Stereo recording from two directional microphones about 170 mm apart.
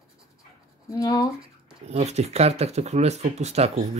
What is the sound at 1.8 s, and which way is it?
Speech, 40° right (ahead or behind).